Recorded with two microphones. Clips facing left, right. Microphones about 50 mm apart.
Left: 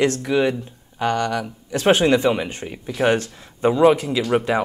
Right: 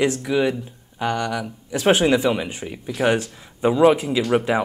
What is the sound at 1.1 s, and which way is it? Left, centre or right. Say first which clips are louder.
Speech: left 2 dB; centre.